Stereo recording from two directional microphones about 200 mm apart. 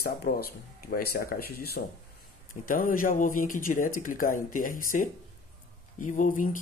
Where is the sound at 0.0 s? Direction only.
50° left (ahead or behind).